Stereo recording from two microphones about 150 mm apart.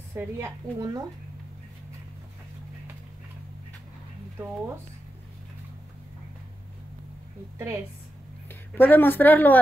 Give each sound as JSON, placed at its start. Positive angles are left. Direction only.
{"t": 0.1, "sound": "speech", "side_deg": -20}
{"t": 8.5, "sound": "a woman's voice", "side_deg": 15}